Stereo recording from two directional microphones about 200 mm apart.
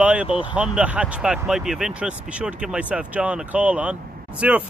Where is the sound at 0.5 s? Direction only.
5° right (ahead or behind).